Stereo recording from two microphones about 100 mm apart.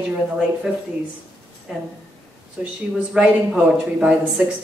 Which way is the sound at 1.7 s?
5° right (ahead or behind).